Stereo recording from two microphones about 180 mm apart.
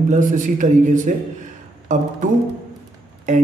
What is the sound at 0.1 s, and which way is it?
A man's voice, 45° right (ahead or behind).